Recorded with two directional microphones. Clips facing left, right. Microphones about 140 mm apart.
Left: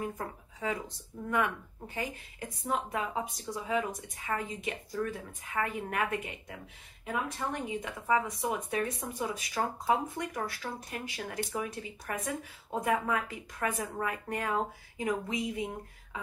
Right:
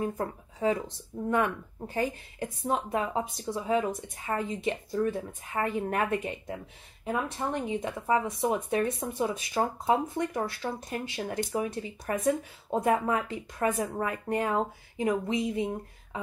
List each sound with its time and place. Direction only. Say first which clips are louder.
0.6 s speech: right 7 dB; 30° right (ahead or behind)